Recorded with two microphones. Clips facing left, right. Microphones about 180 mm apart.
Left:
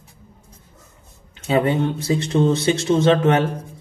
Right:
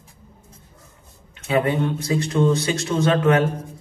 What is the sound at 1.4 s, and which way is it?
Speech, 30° left (ahead or behind).